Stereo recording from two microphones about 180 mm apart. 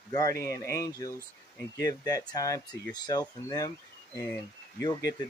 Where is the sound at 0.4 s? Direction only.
15° left (ahead or behind).